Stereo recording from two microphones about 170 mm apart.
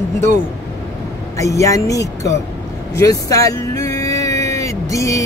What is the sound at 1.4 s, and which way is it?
Speech, 20° left (ahead or behind).